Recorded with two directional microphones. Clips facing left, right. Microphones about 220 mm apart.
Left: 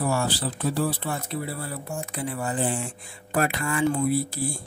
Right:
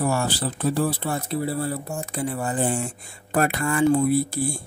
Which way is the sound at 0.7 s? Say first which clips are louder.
Right 3 dB; 35° right (ahead or behind).